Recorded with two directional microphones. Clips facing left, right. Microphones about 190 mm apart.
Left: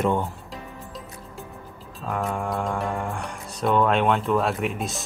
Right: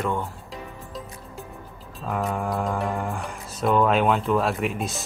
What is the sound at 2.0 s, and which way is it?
Speech, centre (ahead or behind).